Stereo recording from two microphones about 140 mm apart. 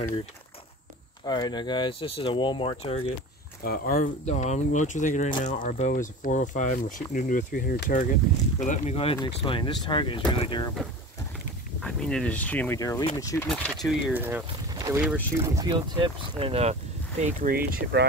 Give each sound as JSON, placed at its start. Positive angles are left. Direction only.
{"t": 1.2, "sound": "speech", "side_deg": 30}
{"t": 3.6, "sound": "speech", "side_deg": 90}
{"t": 8.9, "sound": "speech", "side_deg": 40}
{"t": 11.8, "sound": "speech", "side_deg": 5}
{"t": 13.5, "sound": "speech", "side_deg": 0}
{"t": 14.1, "sound": "speech", "side_deg": -15}
{"t": 14.7, "sound": "boat", "side_deg": -25}
{"t": 15.7, "sound": "speech", "side_deg": -35}
{"t": 17.2, "sound": "speech", "side_deg": -70}